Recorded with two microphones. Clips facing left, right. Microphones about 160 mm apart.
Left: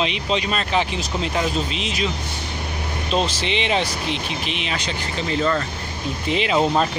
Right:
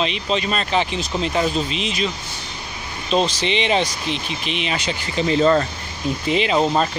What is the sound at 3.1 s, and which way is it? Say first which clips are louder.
Speech: right 3 dB; 5° left (ahead or behind).